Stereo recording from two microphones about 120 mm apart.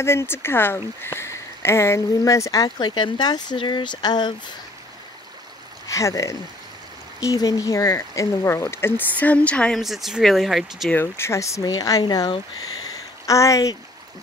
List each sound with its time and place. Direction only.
0.0 s speech: 20° left (ahead or behind)
5.9 s speech: 25° left (ahead or behind); by 9.8 s 10° left (ahead or behind)
9.8 s speech: centre (ahead or behind)
10.9 s speech: 20° left (ahead or behind); by 12.4 s 35° left (ahead or behind)
13.3 s speech: 25° left (ahead or behind)